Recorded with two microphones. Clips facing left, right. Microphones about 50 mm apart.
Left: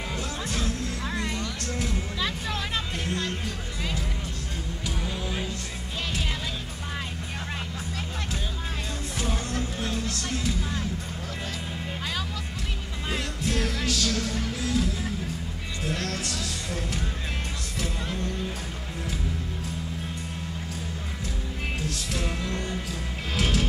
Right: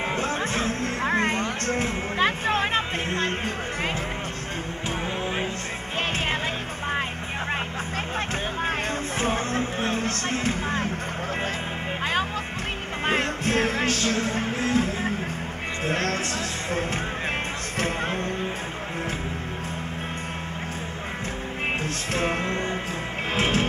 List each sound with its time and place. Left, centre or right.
0.1 s music: right
9.2 s music: right
13.0 s music: right
17.7 s music: right
21.8 s music: right